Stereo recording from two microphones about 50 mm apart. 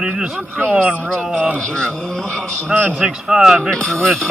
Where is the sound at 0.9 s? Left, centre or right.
Right.